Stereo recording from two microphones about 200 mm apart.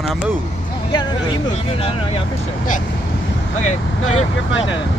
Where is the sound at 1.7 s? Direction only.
30° left (ahead or behind).